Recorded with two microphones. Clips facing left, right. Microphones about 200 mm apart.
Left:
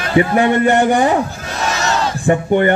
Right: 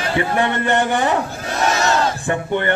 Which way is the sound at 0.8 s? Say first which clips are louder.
Left 5 dB; 40° left (ahead or behind).